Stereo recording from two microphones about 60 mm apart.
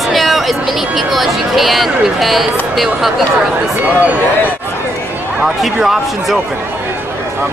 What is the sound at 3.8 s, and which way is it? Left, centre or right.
Speech, right.